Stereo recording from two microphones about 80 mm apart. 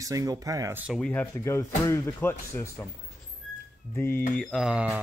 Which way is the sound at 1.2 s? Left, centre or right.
Left.